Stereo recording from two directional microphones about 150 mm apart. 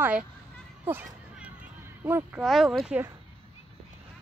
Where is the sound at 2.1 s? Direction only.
15° right (ahead or behind).